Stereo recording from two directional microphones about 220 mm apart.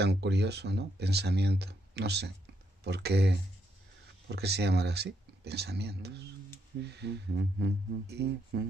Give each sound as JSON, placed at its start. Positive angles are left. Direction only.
{"t": 0.0, "sound": "speech", "side_deg": -50}